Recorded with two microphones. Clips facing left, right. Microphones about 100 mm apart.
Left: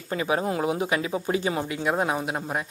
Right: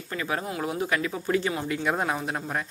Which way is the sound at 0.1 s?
25° left (ahead or behind).